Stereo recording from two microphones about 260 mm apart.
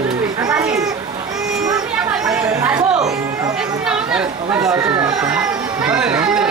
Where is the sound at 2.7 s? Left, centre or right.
Centre.